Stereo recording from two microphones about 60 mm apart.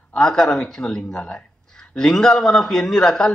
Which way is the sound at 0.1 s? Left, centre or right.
Centre.